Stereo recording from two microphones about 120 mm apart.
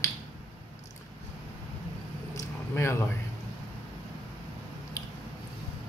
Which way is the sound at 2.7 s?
20° left (ahead or behind).